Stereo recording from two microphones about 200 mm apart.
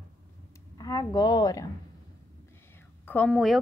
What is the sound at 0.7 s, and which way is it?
Speech, 20° left (ahead or behind).